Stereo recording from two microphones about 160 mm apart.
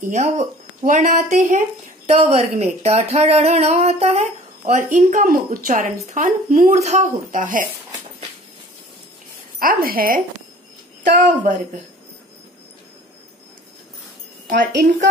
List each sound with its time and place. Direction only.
0.0 s speech: 50° right (ahead or behind)
9.6 s a woman's voice: 65° right (ahead or behind)
14.5 s a woman's voice: 90° right